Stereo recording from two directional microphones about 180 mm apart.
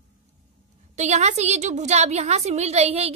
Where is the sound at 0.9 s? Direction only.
40° right (ahead or behind).